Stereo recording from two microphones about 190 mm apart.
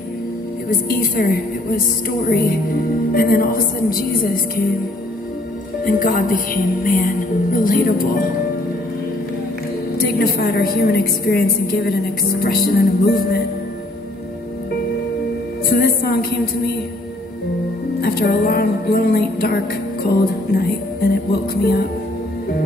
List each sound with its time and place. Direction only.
0.7 s speech: 50° left (ahead or behind)
5.9 s speech: 45° left (ahead or behind)
9.9 s speech: 55° left (ahead or behind)
15.7 s a woman's voice: 55° left (ahead or behind)
18.0 s music: 55° left (ahead or behind)